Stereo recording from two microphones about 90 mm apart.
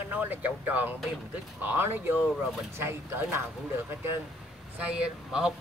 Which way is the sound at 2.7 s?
30° right (ahead or behind).